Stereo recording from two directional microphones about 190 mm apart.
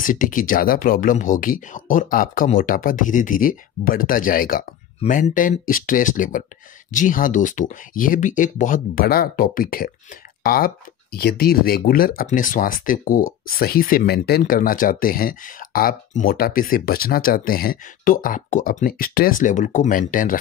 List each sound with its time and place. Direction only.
0.0 s speech: 45° left (ahead or behind)